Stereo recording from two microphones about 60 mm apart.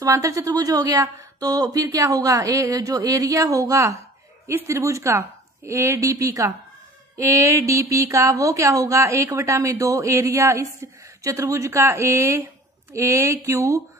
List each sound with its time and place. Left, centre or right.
0.2 s a woman's voice: right
4.5 s speech: right
7.2 s speech: right
11.8 s speech: right